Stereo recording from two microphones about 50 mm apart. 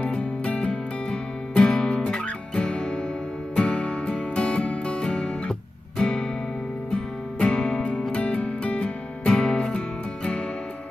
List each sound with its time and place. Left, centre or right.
0.2 s music: left